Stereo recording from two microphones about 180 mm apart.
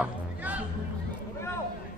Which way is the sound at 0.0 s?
10° right (ahead or behind).